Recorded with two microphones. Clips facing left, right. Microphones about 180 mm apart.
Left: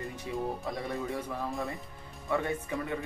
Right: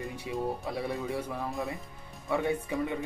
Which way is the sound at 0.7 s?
10° right (ahead or behind).